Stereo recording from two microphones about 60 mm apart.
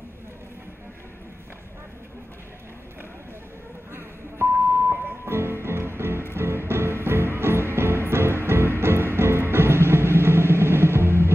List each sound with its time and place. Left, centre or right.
3.9 s telephone dialing: right
5.2 s music: right